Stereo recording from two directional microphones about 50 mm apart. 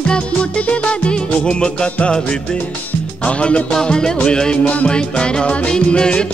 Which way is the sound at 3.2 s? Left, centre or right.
Left.